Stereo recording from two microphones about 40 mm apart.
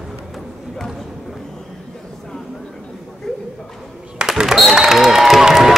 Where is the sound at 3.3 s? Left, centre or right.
Centre.